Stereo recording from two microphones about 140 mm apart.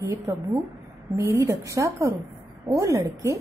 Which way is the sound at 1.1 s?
20° right (ahead or behind).